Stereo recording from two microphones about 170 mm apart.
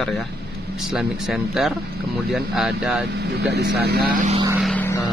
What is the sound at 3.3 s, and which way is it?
Speech, 75° right (ahead or behind).